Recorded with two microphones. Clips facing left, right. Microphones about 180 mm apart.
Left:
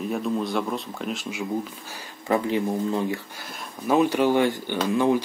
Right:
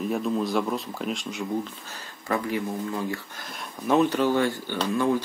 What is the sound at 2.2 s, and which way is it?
Speech, 25° left (ahead or behind).